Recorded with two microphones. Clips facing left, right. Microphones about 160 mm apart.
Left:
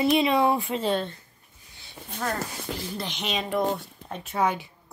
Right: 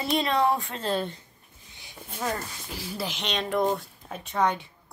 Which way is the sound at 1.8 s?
10° right (ahead or behind).